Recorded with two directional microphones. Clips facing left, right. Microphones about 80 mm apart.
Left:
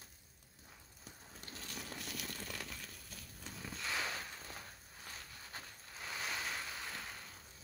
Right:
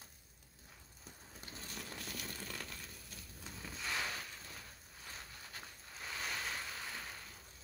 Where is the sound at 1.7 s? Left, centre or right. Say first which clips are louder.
Left 1 dB; centre.